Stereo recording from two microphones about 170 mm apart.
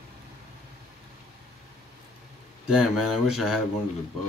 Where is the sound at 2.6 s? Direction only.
5° right (ahead or behind).